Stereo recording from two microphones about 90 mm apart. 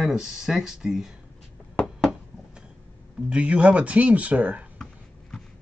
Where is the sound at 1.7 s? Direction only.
Centre (ahead or behind).